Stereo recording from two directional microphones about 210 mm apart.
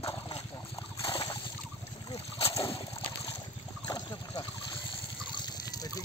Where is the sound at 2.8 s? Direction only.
15° left (ahead or behind).